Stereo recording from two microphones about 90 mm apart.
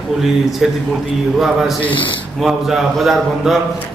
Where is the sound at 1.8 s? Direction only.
70° left (ahead or behind).